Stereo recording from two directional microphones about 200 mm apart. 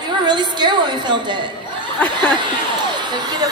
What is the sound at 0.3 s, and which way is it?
A woman's voice, 20° right (ahead or behind).